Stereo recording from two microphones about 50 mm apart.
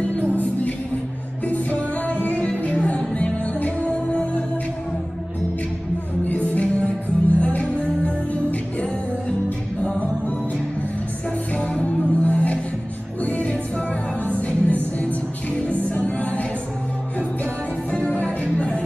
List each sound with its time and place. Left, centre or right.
0.4 s music: left
6.2 s music: left
11.8 s music: left
17.9 s music: left